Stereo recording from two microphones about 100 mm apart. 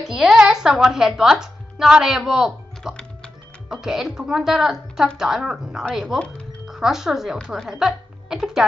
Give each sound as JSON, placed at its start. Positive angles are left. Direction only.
{"t": 0.0, "sound": "a woman's voice", "side_deg": -5}